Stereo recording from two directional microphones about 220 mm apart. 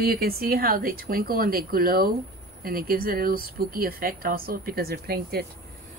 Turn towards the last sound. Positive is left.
turn(degrees=-45)  # may be behind; listen again after turning